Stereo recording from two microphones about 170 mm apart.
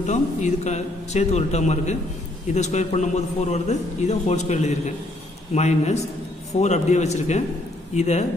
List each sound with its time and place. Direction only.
0.0 s a man's voice: 45° left (ahead or behind)